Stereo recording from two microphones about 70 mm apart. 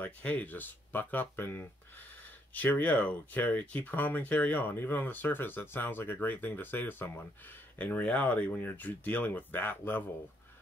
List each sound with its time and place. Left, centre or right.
0.0 s speech: left
7.8 s speech: centre